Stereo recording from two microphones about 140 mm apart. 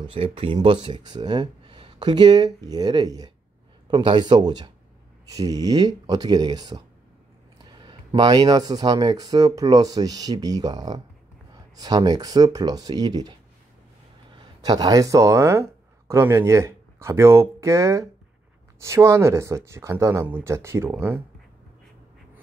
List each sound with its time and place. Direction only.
0.1 s speech: 40° right (ahead or behind)
7.8 s speech: 30° right (ahead or behind)
14.6 s speech: 25° right (ahead or behind)